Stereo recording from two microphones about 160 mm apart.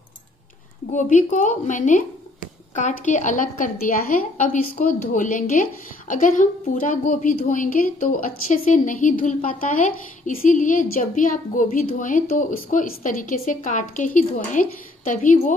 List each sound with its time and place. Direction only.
0.9 s a woman's voice: 50° left (ahead or behind)